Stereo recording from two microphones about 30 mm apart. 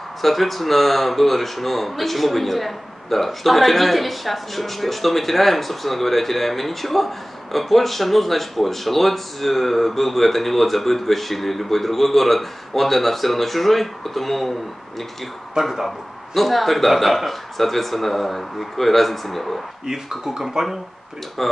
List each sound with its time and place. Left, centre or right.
0.2 s speech: centre
15.6 s speech: centre
16.3 s speech: centre
19.9 s speech: centre
21.4 s speech: centre